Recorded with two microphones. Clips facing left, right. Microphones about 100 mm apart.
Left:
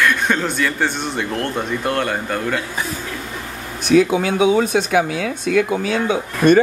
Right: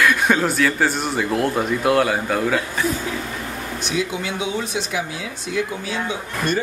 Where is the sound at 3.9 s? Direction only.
50° left (ahead or behind).